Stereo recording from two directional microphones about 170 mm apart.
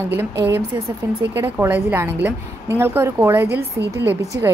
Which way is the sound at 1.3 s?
15° right (ahead or behind).